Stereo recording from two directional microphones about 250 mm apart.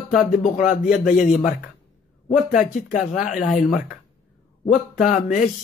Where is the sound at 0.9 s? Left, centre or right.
Left.